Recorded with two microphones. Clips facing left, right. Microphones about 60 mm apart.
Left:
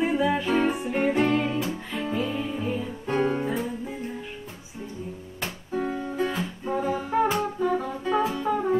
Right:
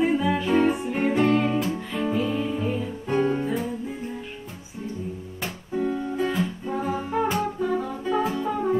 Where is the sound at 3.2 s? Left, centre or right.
Centre.